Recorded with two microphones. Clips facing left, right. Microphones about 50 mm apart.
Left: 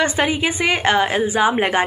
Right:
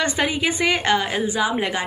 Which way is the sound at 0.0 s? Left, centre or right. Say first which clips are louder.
Left 3 dB; centre.